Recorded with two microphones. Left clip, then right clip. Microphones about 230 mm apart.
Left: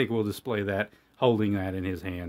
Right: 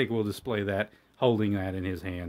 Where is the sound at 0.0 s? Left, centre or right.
Centre.